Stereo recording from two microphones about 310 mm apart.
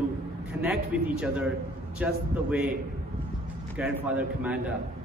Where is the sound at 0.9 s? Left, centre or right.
Centre.